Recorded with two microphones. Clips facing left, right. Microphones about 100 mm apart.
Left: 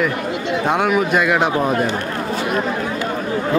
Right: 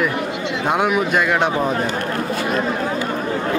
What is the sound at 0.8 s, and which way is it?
Speech, centre (ahead or behind).